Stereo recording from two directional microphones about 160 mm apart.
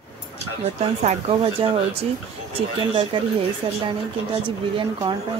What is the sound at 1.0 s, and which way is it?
Speech, 35° right (ahead or behind).